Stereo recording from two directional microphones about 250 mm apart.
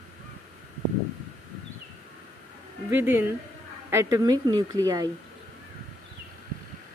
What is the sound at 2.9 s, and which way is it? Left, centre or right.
Speech, centre.